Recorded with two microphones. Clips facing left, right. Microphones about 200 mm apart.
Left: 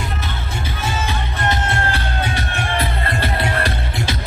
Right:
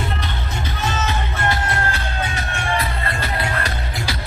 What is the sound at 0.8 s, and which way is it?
Music, 10° left (ahead or behind).